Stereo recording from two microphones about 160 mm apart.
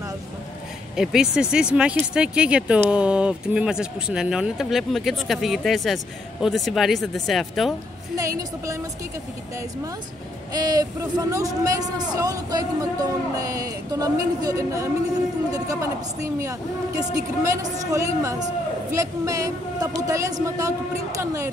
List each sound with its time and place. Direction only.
0.9 s speech: 5° right (ahead or behind)
8.2 s speech: 20° right (ahead or behind)
10.5 s speech: 25° right (ahead or behind)